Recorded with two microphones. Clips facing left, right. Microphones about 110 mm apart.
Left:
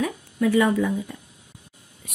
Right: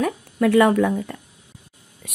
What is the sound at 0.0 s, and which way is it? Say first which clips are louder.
Speech: right 3 dB; 65° right (ahead or behind).